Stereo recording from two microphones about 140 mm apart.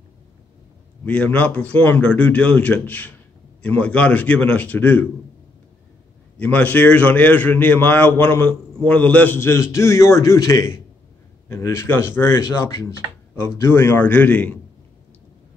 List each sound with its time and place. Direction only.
1.0 s a man's voice: 10° left (ahead or behind)
6.3 s a man's voice: 10° left (ahead or behind)